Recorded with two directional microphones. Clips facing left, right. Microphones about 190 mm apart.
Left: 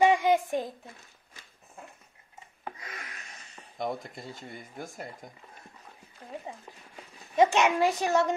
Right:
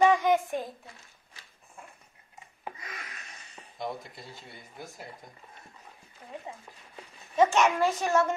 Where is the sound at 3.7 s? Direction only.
50° left (ahead or behind).